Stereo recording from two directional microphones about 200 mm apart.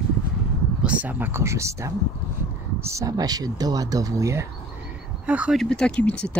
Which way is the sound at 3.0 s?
20° right (ahead or behind).